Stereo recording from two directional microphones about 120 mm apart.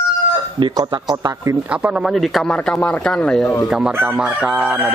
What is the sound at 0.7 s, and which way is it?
Speech, 35° right (ahead or behind).